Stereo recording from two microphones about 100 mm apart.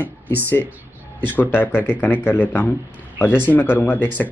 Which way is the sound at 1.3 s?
20° left (ahead or behind).